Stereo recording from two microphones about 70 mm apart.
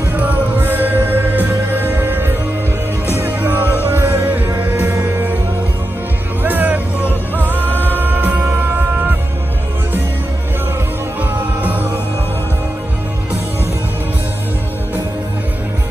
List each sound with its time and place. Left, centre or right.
0.1 s music: right
6.4 s music: right
11.1 s music: right